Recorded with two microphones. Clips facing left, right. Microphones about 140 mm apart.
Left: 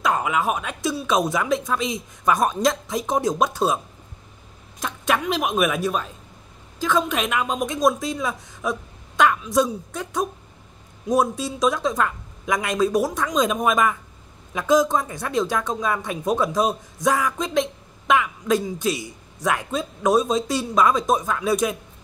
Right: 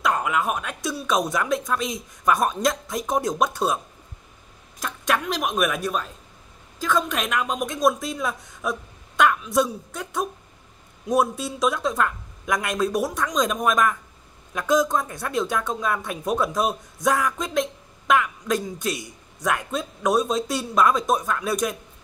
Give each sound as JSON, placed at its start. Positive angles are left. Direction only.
{"t": 0.0, "sound": "speech", "side_deg": 0}
{"t": 4.8, "sound": "speech", "side_deg": 0}